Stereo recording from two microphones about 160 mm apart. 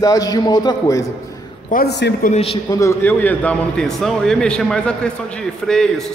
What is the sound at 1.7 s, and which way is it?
Speech, 85° left.